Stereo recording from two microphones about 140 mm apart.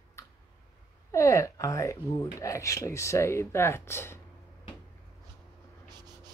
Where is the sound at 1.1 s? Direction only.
20° left (ahead or behind).